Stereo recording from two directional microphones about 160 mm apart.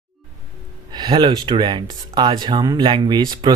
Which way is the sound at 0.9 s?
30° right (ahead or behind).